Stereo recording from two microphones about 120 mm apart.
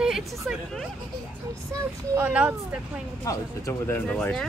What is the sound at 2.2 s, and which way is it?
Speech, 10° right (ahead or behind).